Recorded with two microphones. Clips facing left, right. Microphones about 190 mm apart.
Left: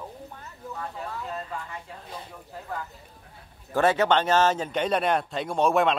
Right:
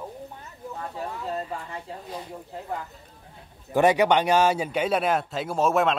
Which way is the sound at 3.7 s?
15° right (ahead or behind).